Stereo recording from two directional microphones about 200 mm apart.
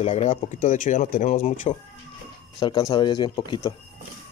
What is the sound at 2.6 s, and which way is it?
Speech, 25° left (ahead or behind).